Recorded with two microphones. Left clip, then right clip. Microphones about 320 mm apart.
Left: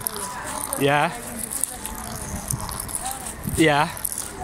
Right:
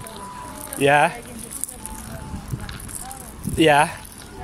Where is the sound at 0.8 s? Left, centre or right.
Right.